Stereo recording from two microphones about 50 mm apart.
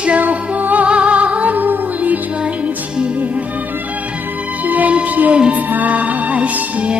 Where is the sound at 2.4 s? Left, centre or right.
Right.